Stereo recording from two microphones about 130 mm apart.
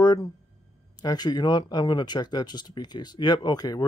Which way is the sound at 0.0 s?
30° left (ahead or behind).